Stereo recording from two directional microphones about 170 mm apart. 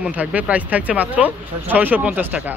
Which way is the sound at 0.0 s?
10° right (ahead or behind).